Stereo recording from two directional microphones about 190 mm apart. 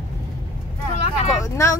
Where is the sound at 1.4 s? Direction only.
15° left (ahead or behind).